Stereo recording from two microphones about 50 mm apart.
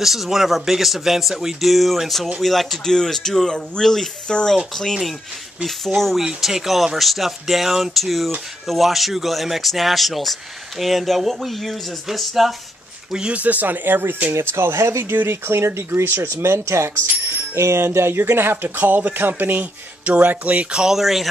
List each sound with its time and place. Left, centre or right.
0.0 s speech: centre
4.3 s speech: centre
5.9 s speech: centre
6.2 s speech: centre
13.1 s speech: centre
13.4 s speech: right
14.3 s speech: right
15.1 s speech: right
18.8 s speech: right
20.7 s speech: centre